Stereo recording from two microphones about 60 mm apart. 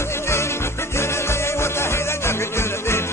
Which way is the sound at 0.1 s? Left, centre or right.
Left.